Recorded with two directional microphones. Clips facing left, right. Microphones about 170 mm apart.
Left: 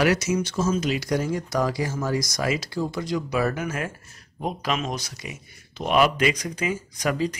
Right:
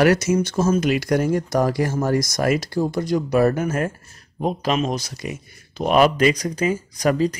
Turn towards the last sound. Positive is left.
turn(degrees=-40)  # may be behind; listen again after turning